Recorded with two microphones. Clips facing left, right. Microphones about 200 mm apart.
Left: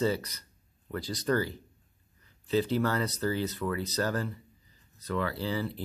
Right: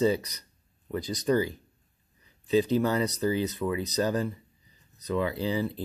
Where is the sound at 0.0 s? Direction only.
15° right (ahead or behind).